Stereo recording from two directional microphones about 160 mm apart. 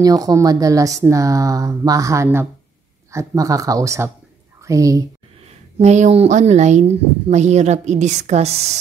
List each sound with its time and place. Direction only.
0.0 s a woman's voice: 25° right (ahead or behind)
5.8 s speech: 45° right (ahead or behind)